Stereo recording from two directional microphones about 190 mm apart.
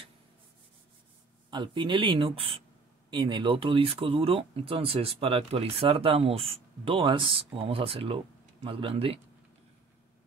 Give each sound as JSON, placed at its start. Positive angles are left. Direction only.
{"t": 1.5, "sound": "speech", "side_deg": -25}